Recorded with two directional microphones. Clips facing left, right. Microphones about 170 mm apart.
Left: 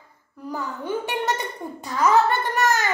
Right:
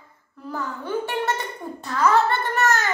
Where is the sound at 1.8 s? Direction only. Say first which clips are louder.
Left 1 dB; 15° left (ahead or behind).